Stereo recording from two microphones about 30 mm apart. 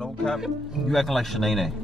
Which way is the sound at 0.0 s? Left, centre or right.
Left.